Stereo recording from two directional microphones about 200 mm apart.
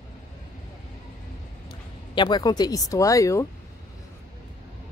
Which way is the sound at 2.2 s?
20° left (ahead or behind).